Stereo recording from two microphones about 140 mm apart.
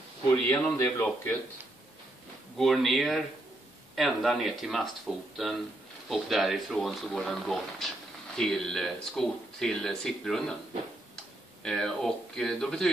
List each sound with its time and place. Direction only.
0.5 s speech: 15° left (ahead or behind)
2.5 s speech: centre (ahead or behind)
11.6 s speech: 5° left (ahead or behind)